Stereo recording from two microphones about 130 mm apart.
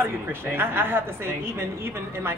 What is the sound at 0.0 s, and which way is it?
Speech, 15° right (ahead or behind).